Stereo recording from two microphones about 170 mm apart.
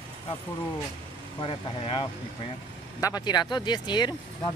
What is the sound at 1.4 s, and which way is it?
Speech, 30° left (ahead or behind).